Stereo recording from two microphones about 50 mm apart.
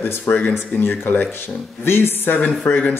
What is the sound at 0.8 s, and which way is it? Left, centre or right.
Speech, left.